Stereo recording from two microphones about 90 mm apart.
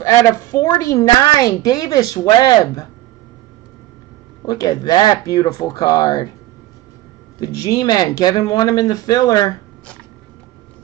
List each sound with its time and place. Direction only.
0.0 s a woman's voice: 35° left (ahead or behind)
2.2 s speech: 55° left (ahead or behind)
2.6 s a woman's voice: 40° left (ahead or behind)
4.5 s speech: 45° left (ahead or behind)
7.3 s speech: 45° left (ahead or behind)